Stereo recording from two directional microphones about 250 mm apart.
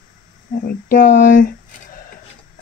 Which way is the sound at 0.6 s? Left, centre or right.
Left.